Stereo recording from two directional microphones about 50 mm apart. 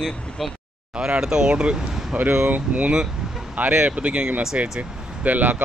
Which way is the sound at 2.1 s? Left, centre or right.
Right.